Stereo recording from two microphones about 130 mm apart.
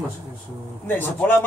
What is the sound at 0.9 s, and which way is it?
Speech, 15° left (ahead or behind).